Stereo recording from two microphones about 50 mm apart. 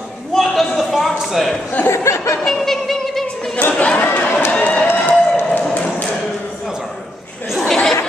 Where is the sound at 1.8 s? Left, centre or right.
Left.